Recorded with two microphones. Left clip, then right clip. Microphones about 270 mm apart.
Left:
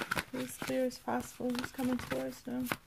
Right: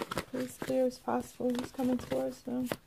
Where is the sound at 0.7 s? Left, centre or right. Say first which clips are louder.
Right 4 dB; left.